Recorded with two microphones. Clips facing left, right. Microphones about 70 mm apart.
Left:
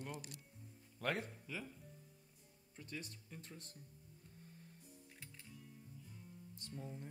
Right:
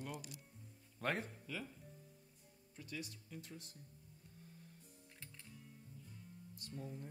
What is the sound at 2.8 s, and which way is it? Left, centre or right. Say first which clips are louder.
Speech: right 1 dB; left.